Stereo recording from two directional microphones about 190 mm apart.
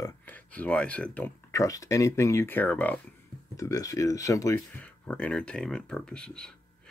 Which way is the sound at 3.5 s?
15° left (ahead or behind).